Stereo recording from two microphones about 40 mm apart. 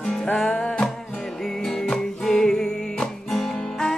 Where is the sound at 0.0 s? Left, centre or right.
Centre.